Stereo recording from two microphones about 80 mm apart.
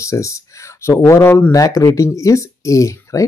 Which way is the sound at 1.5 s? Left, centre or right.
Left.